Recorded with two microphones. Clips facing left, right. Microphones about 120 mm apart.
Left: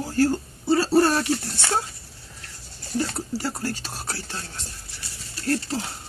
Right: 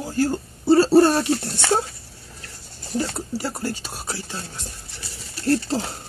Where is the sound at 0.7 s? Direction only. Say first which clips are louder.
Right 5 dB; 30° right (ahead or behind).